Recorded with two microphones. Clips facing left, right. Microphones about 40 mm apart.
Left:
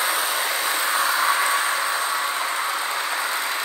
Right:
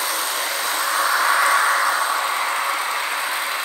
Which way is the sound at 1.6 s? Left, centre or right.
Right.